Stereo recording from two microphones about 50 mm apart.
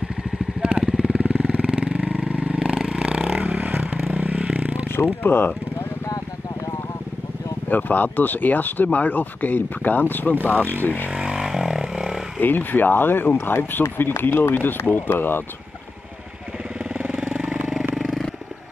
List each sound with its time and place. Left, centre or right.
0.6 s vehicle: centre
3.3 s vehicle: right
4.1 s scrape: right
4.8 s speech: left
7.7 s speech: left
11.1 s vehicle: centre
11.4 s a sound: centre
12.4 s speech: left
16.9 s vehicle: centre